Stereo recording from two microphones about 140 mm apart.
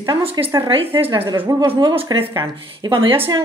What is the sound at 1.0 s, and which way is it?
Speech, 40° right (ahead or behind).